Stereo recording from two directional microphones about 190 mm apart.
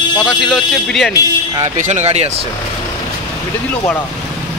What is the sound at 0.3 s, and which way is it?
Speech, centre (ahead or behind).